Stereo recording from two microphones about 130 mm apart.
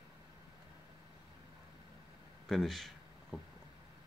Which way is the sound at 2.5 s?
Centre (ahead or behind).